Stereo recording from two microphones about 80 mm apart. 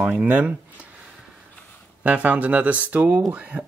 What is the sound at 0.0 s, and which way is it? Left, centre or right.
Speech, centre.